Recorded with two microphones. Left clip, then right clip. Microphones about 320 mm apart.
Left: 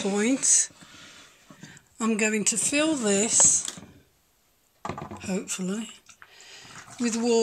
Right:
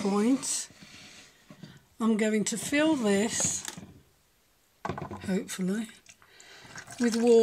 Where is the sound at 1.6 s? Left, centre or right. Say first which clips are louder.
Left 2 dB; right.